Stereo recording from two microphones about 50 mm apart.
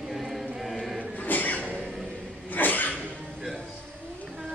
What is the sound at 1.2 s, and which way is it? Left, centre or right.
Music, left.